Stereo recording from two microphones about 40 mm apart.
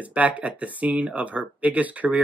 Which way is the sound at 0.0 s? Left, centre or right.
Right.